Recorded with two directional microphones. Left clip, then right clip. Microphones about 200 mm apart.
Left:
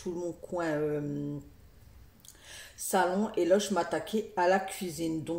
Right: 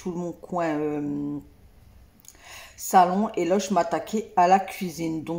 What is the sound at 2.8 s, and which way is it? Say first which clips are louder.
Speech: right 9 dB; 10° right (ahead or behind).